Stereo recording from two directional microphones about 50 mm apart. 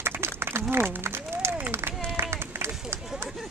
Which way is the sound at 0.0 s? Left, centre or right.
Right.